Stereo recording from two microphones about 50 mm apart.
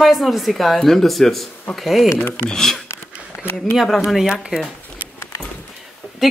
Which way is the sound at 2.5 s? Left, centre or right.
Centre.